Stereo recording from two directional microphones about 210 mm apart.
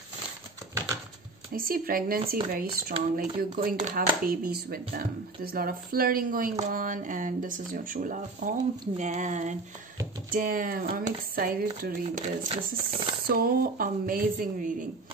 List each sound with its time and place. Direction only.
1.5 s speech: 40° right (ahead or behind)